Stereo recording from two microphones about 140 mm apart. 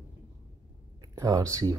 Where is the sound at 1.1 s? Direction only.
25° right (ahead or behind).